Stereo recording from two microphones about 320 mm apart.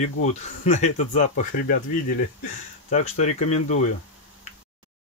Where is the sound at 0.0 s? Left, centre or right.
Left.